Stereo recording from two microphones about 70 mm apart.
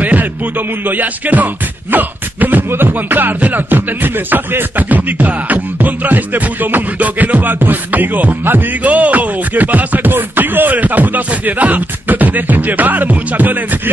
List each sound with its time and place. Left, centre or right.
0.0 s music: right